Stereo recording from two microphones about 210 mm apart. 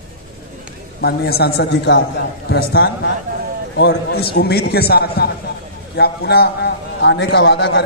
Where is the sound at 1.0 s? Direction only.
50° left (ahead or behind).